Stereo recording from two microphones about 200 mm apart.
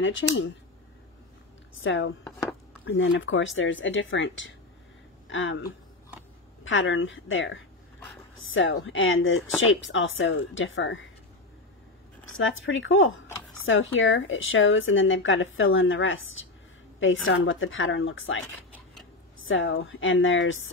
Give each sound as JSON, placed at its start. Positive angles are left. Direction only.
{"t": 0.0, "sound": "speech", "side_deg": 70}
{"t": 1.8, "sound": "speech", "side_deg": 70}
{"t": 2.8, "sound": "speech", "side_deg": 85}
{"t": 6.6, "sound": "speech", "side_deg": 75}
{"t": 12.7, "sound": "speech", "side_deg": 75}
{"t": 19.4, "sound": "speech", "side_deg": 75}